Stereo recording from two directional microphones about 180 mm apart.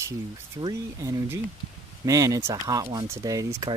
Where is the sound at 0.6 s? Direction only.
20° right (ahead or behind).